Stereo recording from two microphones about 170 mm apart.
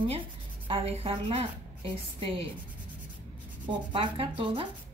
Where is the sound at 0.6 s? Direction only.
35° right (ahead or behind).